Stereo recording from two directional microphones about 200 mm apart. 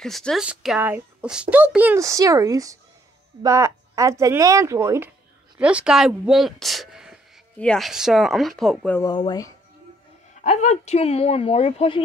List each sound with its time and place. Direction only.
0.0 s speech: centre (ahead or behind)
9.0 s speech: 20° left (ahead or behind)
10.4 s a woman's voice: 35° left (ahead or behind)